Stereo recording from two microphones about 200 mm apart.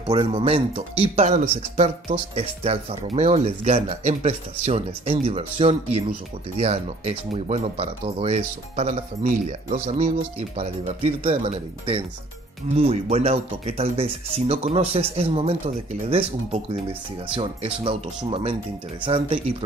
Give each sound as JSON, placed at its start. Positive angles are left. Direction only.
{"t": 0.0, "sound": "speech", "side_deg": -25}